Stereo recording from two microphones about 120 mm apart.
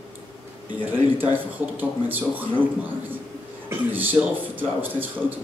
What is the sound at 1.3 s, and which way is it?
A man's voice, 15° right (ahead or behind).